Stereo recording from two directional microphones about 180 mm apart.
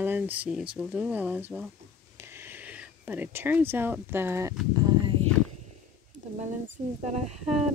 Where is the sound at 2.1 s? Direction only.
15° right (ahead or behind).